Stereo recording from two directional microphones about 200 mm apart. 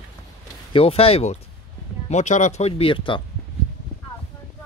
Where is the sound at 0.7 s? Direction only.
30° left (ahead or behind).